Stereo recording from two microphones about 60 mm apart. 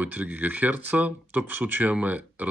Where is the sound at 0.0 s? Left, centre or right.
Right.